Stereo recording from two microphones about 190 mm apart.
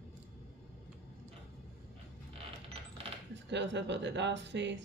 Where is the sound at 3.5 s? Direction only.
65° right (ahead or behind).